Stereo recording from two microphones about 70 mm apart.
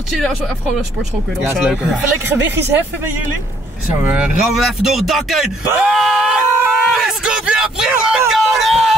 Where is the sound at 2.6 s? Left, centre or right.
Right.